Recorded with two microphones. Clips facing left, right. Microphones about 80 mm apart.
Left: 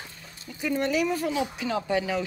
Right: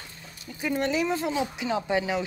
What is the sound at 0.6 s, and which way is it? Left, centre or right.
Speech, right.